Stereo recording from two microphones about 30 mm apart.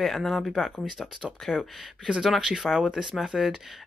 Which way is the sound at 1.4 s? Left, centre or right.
Centre.